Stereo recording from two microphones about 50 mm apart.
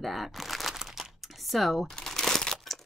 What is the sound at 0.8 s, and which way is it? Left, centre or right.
Crumpling, centre.